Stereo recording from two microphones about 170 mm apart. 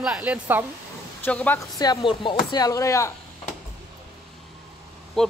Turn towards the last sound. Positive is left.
turn(degrees=0)  # may be behind; listen again after turning